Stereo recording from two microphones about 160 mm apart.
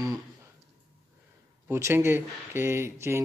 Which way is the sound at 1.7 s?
15° right (ahead or behind).